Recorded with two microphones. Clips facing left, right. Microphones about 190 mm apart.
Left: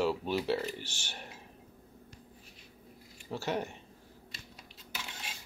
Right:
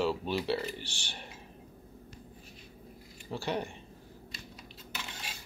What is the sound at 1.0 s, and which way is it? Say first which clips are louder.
Speech: even; 5° left (ahead or behind).